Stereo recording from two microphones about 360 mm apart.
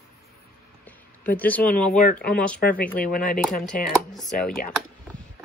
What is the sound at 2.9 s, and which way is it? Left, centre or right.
Speech, left.